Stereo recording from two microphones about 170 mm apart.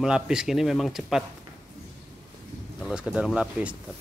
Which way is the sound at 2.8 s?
Centre (ahead or behind).